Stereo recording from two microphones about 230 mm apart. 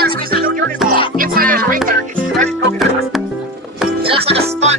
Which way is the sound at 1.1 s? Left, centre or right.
Right.